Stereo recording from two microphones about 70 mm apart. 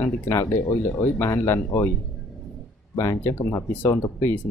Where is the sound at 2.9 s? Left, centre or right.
Left.